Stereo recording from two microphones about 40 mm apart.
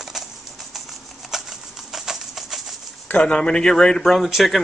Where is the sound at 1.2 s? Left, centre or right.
Centre.